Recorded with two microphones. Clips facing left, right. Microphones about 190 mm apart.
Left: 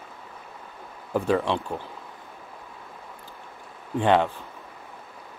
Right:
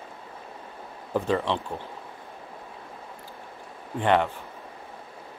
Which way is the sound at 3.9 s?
15° left (ahead or behind).